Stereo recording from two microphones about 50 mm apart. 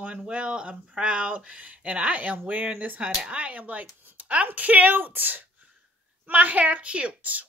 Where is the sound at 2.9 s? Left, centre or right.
Right.